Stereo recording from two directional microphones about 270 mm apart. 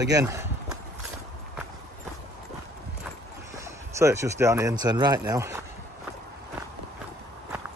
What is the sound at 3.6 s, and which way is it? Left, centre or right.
Speech, centre.